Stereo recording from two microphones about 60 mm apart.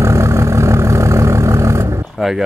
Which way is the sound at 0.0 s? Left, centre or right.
Right.